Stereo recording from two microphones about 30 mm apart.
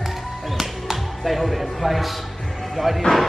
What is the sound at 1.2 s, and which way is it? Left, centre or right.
A man's voice, centre.